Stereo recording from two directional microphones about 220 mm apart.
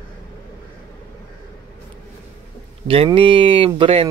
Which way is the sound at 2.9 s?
25° right (ahead or behind).